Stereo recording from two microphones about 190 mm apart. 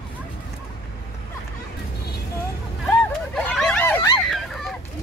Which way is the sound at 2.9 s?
Centre (ahead or behind).